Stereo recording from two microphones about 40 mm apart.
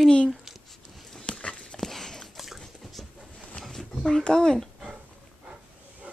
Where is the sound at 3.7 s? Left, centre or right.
Centre.